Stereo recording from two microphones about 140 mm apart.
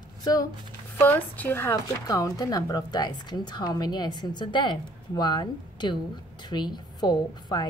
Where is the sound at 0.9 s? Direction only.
15° left (ahead or behind).